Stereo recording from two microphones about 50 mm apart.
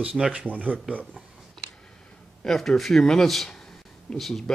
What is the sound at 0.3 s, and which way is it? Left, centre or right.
Speech, right.